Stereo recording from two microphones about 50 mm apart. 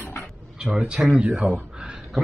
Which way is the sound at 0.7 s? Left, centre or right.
Centre.